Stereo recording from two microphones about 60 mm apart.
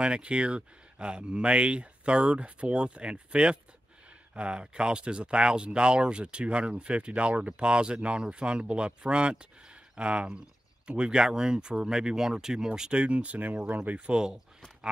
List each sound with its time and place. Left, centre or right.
0.0 s speech: centre